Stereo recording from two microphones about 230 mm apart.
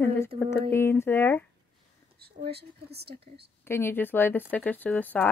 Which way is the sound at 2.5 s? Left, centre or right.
Right.